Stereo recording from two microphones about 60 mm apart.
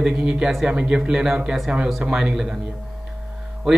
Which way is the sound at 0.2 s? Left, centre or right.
Centre.